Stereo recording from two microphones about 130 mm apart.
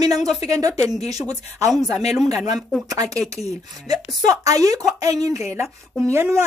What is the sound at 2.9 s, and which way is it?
Speech, 25° right (ahead or behind).